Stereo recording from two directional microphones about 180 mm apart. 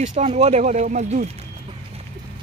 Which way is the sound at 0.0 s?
40° right (ahead or behind).